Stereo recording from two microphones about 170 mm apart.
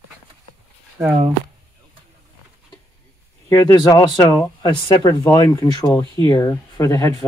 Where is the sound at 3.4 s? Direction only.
20° left (ahead or behind).